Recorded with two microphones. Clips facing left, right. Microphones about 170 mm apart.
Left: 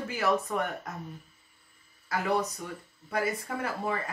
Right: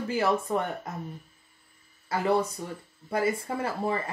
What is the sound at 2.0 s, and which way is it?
Speech, 30° right (ahead or behind).